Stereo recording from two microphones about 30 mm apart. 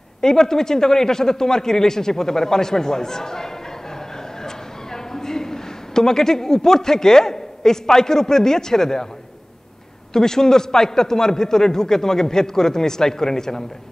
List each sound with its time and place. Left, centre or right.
0.2 s a man's voice: centre
4.9 s a man's voice: centre
10.1 s a man's voice: centre